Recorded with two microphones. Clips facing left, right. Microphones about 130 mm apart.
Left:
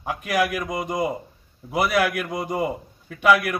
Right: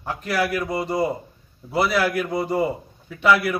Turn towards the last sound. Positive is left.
turn(degrees=10)  # may be behind; listen again after turning